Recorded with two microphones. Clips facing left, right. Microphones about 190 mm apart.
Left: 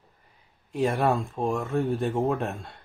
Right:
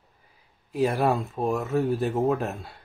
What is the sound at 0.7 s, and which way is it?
Speech, centre (ahead or behind).